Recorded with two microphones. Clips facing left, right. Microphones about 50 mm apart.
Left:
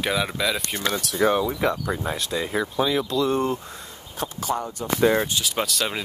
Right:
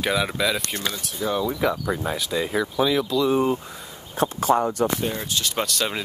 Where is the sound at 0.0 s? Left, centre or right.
Centre.